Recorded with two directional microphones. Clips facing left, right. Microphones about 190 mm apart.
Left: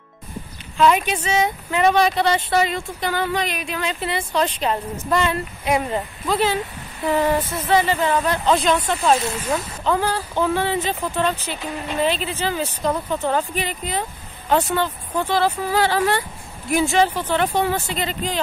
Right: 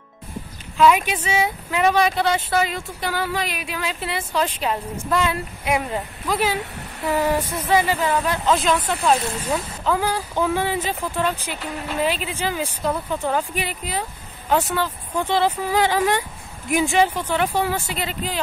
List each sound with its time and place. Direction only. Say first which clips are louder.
0.7 s speech: even; 5° right (ahead or behind)
15.2 s speech: even; 20° right (ahead or behind)